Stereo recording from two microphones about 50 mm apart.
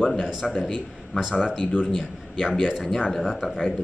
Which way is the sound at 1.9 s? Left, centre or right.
Centre.